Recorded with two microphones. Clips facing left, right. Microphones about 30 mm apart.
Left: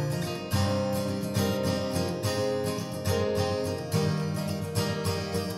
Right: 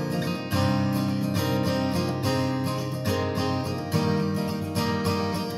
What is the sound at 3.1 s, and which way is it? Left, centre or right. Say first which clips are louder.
Music: even; centre.